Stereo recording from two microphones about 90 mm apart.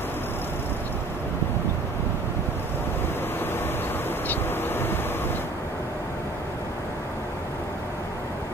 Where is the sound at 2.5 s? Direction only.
25° left (ahead or behind).